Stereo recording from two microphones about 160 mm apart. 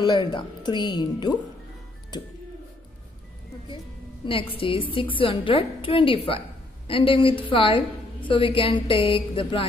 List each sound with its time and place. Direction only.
0.0 s speech: 25° left (ahead or behind)
4.3 s a woman's voice: 35° left (ahead or behind)